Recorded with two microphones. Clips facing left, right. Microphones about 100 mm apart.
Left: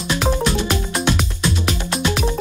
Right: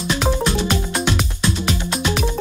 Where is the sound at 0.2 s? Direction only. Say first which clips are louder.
Left 1 dB; centre (ahead or behind).